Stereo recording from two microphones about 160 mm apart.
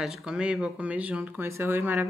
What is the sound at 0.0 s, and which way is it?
Speech, 5° right (ahead or behind).